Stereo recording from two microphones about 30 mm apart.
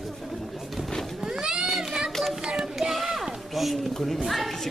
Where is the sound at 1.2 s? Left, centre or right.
Centre.